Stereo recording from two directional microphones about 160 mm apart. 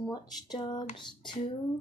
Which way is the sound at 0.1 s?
30° left (ahead or behind).